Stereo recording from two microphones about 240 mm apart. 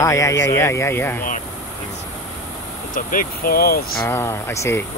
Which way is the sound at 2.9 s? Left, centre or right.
Left.